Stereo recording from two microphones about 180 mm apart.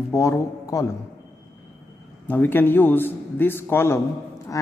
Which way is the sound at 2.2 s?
10° left (ahead or behind).